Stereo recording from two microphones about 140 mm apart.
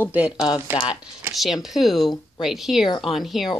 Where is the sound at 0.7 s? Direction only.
35° left (ahead or behind).